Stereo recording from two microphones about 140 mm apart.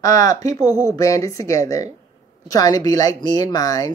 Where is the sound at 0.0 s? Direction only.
25° left (ahead or behind).